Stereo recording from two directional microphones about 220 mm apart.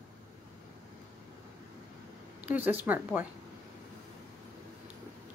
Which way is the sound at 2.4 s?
5° right (ahead or behind).